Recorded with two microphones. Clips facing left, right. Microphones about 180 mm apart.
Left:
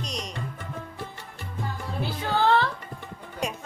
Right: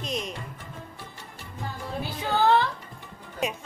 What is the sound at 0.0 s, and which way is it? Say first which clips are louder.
Music: right 3 dB; centre (ahead or behind).